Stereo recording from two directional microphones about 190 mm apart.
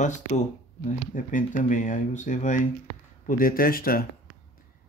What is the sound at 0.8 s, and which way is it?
Speech, 40° left (ahead or behind).